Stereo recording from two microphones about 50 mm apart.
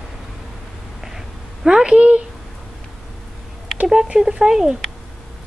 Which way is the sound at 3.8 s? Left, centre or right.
Centre.